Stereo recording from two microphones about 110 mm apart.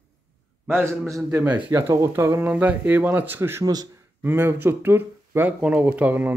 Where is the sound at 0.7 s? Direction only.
25° right (ahead or behind).